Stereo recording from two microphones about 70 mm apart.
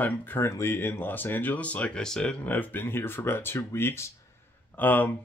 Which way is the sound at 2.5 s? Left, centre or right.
Left.